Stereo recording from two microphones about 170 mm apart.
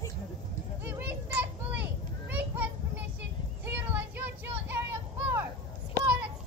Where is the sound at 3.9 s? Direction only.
10° right (ahead or behind).